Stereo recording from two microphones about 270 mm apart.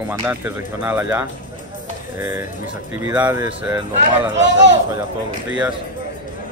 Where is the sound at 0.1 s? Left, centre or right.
Centre.